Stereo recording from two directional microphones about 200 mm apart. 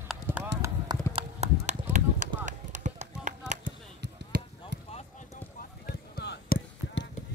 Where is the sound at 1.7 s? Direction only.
35° right (ahead or behind).